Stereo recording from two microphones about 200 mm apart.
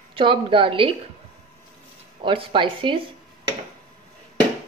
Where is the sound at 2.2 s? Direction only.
25° right (ahead or behind).